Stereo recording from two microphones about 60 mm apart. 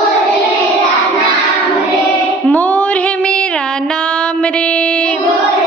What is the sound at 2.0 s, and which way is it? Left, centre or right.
Female singing, left.